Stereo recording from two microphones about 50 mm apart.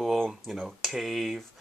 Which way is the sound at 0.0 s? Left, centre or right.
Centre.